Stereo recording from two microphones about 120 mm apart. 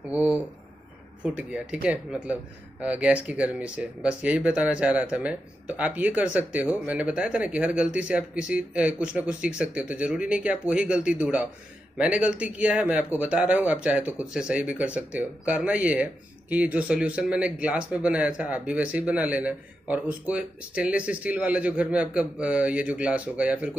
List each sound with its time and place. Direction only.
0.1 s speech: 10° right (ahead or behind)